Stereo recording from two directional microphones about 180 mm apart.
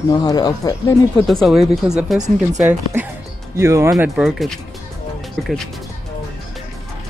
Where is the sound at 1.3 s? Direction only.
Centre (ahead or behind).